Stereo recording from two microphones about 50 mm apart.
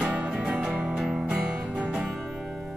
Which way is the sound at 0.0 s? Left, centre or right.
Centre.